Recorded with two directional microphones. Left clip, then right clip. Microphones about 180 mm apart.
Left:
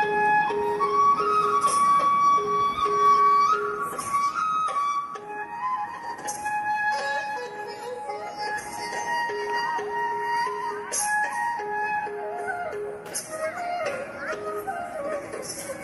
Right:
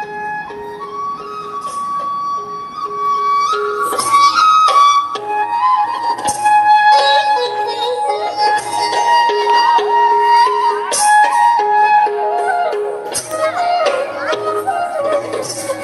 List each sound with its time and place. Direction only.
3.6 s music: 50° right (ahead or behind)